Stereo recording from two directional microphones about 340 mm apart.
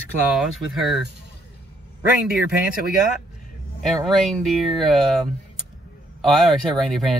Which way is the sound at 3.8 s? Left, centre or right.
Centre.